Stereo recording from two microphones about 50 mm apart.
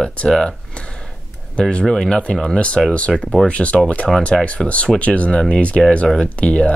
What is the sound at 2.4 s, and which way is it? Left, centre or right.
Speech, centre.